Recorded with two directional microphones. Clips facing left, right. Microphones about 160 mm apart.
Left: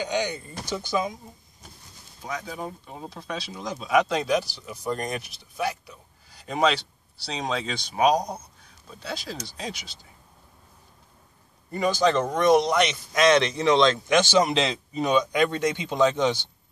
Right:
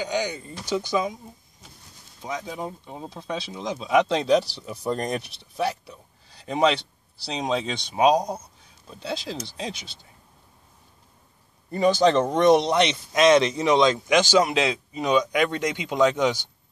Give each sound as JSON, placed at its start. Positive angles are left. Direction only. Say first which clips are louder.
{"t": 0.7, "sound": "speech", "louder": "right 6 dB", "side_deg": -15}
{"t": 2.2, "sound": "speech", "louder": "right 2 dB", "side_deg": -20}
{"t": 11.7, "sound": "speech", "louder": "right 3 dB", "side_deg": -30}